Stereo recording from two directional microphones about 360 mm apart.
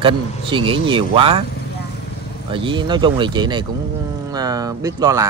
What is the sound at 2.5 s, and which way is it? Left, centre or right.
Speech, centre.